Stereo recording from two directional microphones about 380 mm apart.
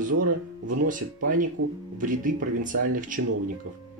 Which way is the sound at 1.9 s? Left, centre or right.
Right.